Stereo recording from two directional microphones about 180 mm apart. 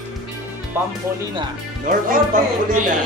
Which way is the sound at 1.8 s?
50° right (ahead or behind).